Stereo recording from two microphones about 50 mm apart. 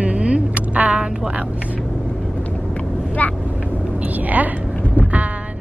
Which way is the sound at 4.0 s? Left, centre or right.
Right.